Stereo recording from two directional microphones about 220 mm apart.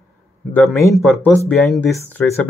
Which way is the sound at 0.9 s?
Centre (ahead or behind).